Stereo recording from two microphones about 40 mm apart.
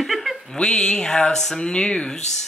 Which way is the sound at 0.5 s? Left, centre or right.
Centre.